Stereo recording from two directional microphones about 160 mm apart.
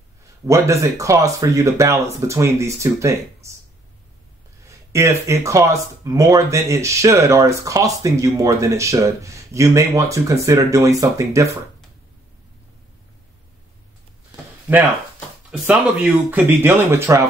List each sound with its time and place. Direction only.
0.5 s speech: 20° right (ahead or behind)
4.6 s speech: 20° right (ahead or behind)
14.3 s a sound: 10° right (ahead or behind)
15.6 s speech: 10° right (ahead or behind)